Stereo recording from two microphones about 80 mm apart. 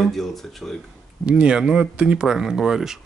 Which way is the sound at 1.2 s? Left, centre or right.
Centre.